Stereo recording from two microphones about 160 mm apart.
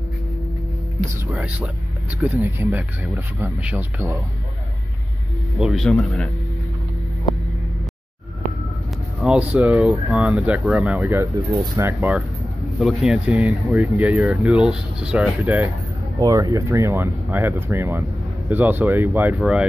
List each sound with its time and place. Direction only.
1.3 s speech: 10° right (ahead or behind)
5.6 s speech: centre (ahead or behind)
9.2 s speech: 5° right (ahead or behind)
16.2 s speech: 25° right (ahead or behind)